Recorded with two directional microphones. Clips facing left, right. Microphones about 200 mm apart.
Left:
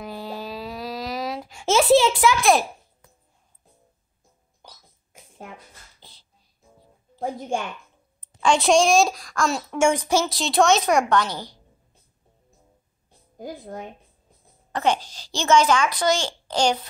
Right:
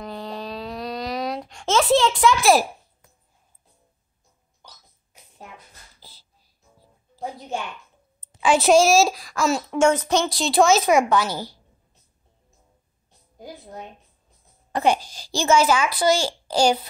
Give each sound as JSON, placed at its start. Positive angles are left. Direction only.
{"t": 0.0, "sound": "a sound", "side_deg": 5}
{"t": 5.9, "sound": "a sound", "side_deg": -5}
{"t": 7.2, "sound": "a woman's voice", "side_deg": 50}
{"t": 8.2, "sound": "a woman's voice", "side_deg": -5}
{"t": 9.8, "sound": "a woman's voice", "side_deg": 10}
{"t": 14.7, "sound": "speech", "side_deg": -10}